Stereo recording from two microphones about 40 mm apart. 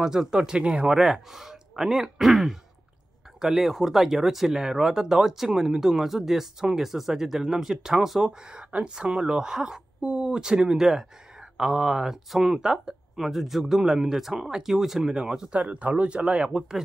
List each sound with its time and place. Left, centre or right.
0.0 s speech: centre
0.8 s speech: centre
8.5 s speech: right
13.2 s speech: centre
15.5 s speech: right
16.4 s speech: centre